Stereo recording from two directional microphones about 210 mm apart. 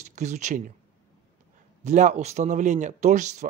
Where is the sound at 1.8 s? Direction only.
35° right (ahead or behind).